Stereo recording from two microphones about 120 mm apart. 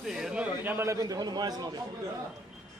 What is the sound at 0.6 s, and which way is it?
A man's voice, 25° right (ahead or behind).